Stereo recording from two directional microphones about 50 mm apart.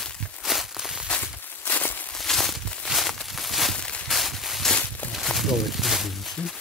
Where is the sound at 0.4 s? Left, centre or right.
Centre.